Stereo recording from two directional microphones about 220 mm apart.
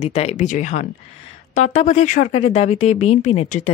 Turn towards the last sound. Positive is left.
turn(degrees=30)  # may be behind; listen again after turning